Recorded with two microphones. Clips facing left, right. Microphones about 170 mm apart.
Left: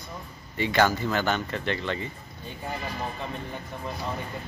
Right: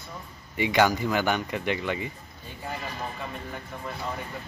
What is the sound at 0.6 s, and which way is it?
A man's voice, 15° right (ahead or behind).